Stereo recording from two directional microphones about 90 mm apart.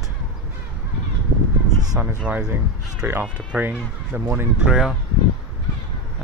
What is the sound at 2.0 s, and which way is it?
Speech, 20° right (ahead or behind).